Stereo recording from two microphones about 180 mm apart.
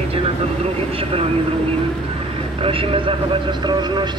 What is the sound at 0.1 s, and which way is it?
A man's voice, 35° right (ahead or behind).